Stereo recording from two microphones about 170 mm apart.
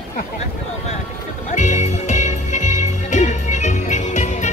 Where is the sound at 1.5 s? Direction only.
45° left (ahead or behind).